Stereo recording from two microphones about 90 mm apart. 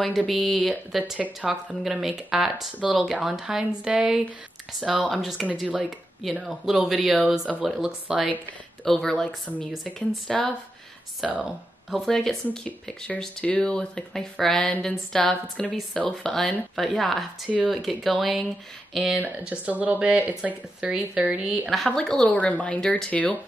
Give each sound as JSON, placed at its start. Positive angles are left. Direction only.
{"t": 0.3, "sound": "speech", "side_deg": 0}
{"t": 5.6, "sound": "speech", "side_deg": -10}
{"t": 8.8, "sound": "speech", "side_deg": 5}
{"t": 11.2, "sound": "speech", "side_deg": 0}
{"t": 19.1, "sound": "speech", "side_deg": -15}
{"t": 21.8, "sound": "speech", "side_deg": 10}